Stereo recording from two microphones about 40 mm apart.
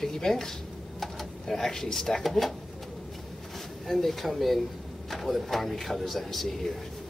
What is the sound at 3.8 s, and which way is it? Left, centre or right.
Speech, centre.